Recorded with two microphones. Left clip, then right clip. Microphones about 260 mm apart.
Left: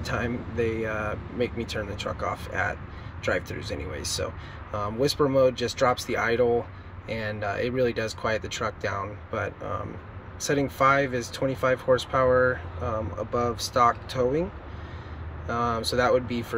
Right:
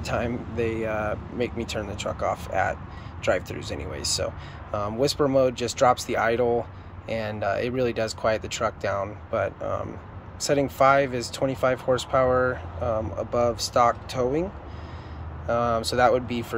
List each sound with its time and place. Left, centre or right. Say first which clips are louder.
0.1 s speech: right 2 dB; centre
15.4 s speech: right 3 dB; right
15.7 s speech: right 2 dB; centre